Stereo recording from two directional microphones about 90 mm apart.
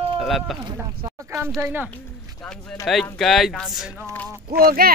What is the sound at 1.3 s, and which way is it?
Speech, 30° right (ahead or behind).